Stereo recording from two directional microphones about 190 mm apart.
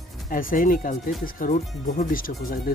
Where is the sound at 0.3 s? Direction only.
45° left (ahead or behind).